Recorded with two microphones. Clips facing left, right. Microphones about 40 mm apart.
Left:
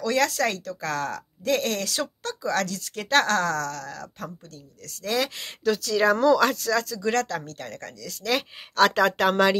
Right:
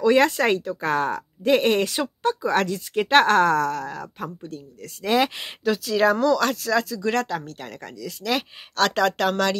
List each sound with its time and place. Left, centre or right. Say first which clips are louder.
0.0 s speech: right 5 dB; right
5.6 s speech: right 2 dB; centre
6.2 s speech: left 1 dB; centre
6.5 s speech: right 2 dB; centre